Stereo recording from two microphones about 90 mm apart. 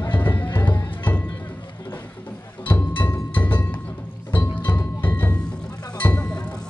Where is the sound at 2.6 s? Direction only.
20° left (ahead or behind).